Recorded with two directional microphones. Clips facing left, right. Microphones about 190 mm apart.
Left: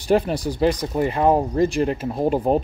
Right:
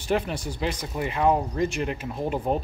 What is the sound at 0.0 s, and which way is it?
Speech, 35° left (ahead or behind).